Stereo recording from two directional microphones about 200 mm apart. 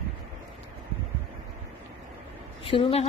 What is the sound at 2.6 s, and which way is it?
Speech, 25° left (ahead or behind).